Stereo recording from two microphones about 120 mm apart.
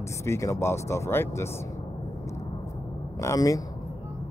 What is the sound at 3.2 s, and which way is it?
Speech, 30° left (ahead or behind).